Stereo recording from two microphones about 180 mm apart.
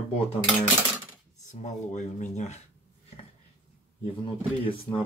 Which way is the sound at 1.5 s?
40° left (ahead or behind).